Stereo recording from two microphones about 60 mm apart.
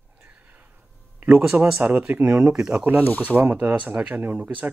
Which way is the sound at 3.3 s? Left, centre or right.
Right.